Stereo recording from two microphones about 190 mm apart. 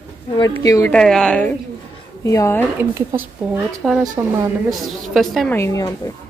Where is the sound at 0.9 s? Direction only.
5° left (ahead or behind).